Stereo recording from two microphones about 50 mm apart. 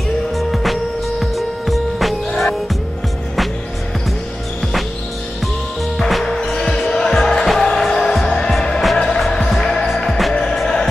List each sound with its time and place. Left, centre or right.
0.4 s music: centre
5.9 s music: centre